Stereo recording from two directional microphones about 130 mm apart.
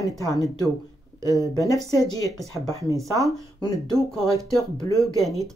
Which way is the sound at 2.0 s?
30° left (ahead or behind).